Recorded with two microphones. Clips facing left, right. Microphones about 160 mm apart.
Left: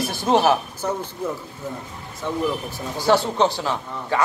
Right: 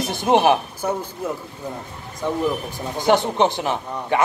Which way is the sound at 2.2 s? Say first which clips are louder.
Right 2 dB; 15° right (ahead or behind).